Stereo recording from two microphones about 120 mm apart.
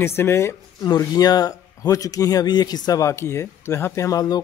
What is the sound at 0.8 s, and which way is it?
Speech, 35° left (ahead or behind).